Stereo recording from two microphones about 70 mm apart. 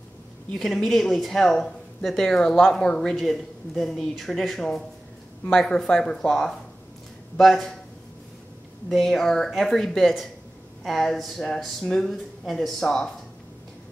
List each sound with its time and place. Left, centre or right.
0.6 s speech: centre
7.3 s speech: centre
8.8 s speech: centre